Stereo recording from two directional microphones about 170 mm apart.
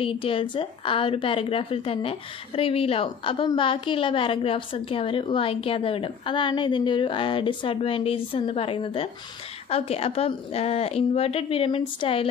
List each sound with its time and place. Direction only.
0.0 s a woman's voice: 30° left (ahead or behind)